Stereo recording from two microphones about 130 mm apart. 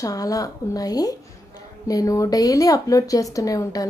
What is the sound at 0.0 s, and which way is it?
A woman's voice, 25° left (ahead or behind).